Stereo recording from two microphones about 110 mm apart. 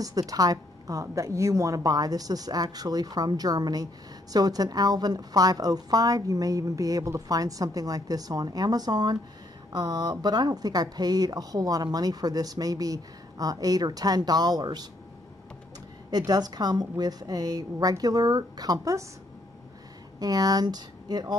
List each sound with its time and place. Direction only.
0.0 s a woman's voice: 35° right (ahead or behind)
16.1 s a woman's voice: 35° right (ahead or behind)
20.2 s speech: 35° right (ahead or behind)